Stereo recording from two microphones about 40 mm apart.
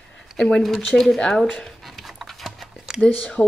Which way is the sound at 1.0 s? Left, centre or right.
Centre.